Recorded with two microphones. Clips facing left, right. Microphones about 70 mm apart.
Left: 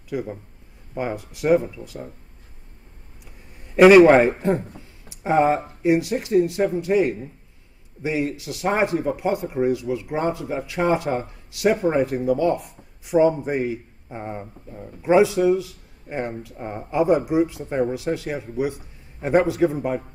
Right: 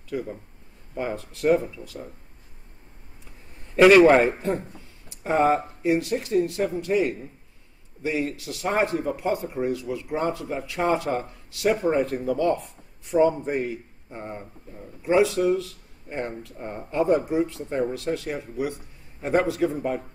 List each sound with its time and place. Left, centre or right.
0.1 s speech: centre
3.7 s a man's voice: centre